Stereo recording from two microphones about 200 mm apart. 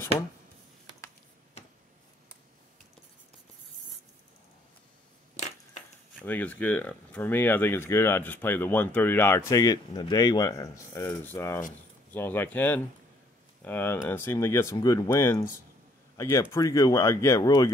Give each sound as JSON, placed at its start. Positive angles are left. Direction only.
{"t": 5.3, "sound": "crushing", "side_deg": 35}
{"t": 6.2, "sound": "speech", "side_deg": 10}